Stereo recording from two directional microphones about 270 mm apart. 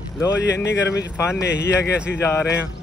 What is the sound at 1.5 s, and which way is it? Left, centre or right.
Speech, left.